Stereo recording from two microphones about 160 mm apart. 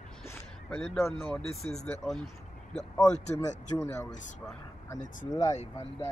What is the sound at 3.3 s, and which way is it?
Speech, 20° left (ahead or behind).